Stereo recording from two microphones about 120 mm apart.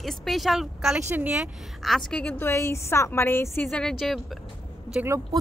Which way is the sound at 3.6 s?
5° left (ahead or behind).